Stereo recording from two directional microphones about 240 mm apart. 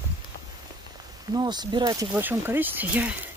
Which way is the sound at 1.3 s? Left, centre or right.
Centre.